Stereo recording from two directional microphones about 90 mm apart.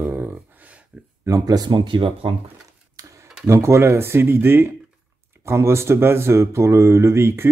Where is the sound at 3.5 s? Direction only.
30° right (ahead or behind).